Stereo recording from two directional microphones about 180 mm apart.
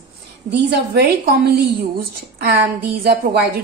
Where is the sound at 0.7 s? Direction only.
60° right (ahead or behind).